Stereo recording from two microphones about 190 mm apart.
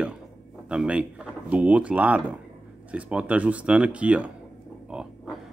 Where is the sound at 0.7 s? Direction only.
5° right (ahead or behind).